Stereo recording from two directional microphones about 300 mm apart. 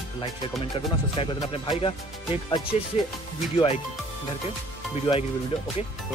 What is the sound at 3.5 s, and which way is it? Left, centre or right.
Speech, left.